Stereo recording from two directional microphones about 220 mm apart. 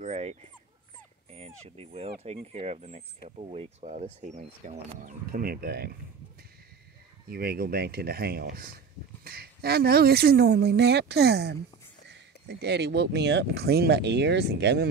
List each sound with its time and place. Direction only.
0.0 s speech: 30° right (ahead or behind)
7.2 s speech: 45° right (ahead or behind)